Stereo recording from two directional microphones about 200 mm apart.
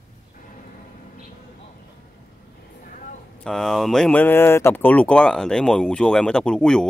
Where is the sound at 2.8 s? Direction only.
40° left (ahead or behind).